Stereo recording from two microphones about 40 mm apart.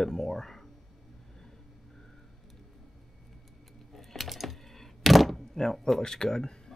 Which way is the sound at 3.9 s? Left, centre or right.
Centre.